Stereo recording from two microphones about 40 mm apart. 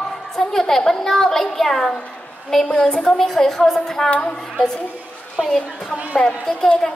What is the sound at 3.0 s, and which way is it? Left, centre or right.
Speech, centre.